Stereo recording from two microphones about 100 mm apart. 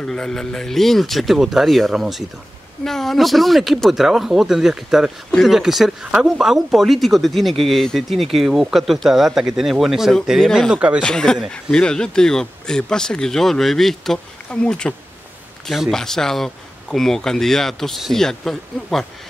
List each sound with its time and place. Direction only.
0.0 s speech: 5° left (ahead or behind)
10.7 s speech: 10° right (ahead or behind)
11.0 s speech: 10° left (ahead or behind)